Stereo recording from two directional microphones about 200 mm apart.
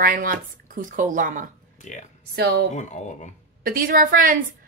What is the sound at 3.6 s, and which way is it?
Speech, 45° right (ahead or behind).